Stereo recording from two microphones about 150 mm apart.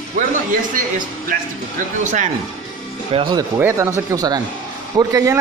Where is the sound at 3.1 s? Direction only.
40° right (ahead or behind).